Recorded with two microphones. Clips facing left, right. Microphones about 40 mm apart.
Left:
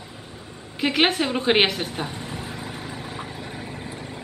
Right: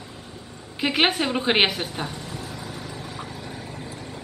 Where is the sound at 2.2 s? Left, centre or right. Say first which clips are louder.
Left 2 dB; left.